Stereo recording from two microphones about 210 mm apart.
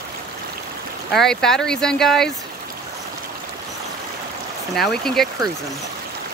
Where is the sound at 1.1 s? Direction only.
Centre (ahead or behind).